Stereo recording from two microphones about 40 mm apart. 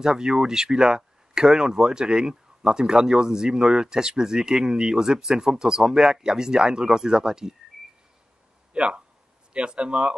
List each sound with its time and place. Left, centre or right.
0.0 s speech: centre
8.7 s speech: right